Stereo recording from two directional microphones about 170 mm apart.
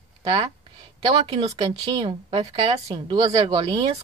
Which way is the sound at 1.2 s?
35° right (ahead or behind).